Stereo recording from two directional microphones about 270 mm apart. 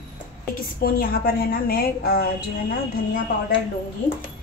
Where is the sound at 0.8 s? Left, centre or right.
Left.